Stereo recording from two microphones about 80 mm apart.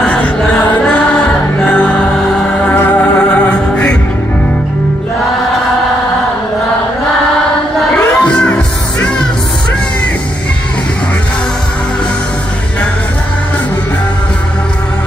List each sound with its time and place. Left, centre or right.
0.0 s music: centre
1.7 s music: centre
8.2 s music: centre